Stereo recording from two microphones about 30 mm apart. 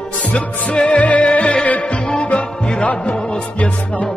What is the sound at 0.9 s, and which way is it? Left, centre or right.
Music, left.